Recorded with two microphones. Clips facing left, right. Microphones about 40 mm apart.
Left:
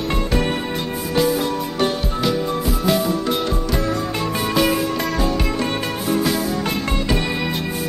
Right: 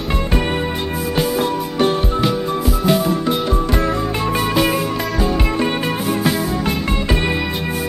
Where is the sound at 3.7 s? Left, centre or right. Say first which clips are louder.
Right 3 dB; right.